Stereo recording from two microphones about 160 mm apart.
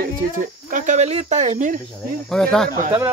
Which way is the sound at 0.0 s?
55° right (ahead or behind).